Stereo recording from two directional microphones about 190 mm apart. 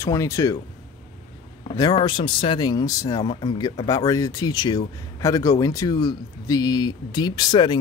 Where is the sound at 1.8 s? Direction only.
25° left (ahead or behind).